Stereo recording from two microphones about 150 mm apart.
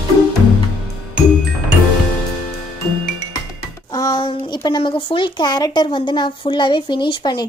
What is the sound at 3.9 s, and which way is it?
Child singing, 20° left (ahead or behind).